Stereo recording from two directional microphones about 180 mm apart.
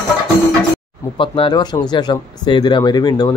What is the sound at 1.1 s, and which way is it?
Speech, 30° left (ahead or behind).